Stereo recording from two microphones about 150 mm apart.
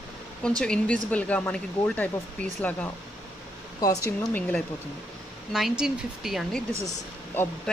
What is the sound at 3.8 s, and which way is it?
Speech, 25° left (ahead or behind).